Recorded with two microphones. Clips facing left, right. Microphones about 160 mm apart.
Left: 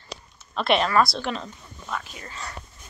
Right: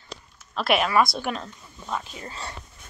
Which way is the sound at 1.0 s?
20° right (ahead or behind).